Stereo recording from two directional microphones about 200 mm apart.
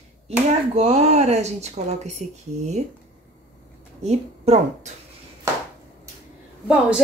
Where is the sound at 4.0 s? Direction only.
35° right (ahead or behind).